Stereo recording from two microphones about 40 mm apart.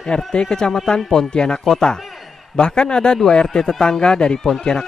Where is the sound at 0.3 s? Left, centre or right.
Left.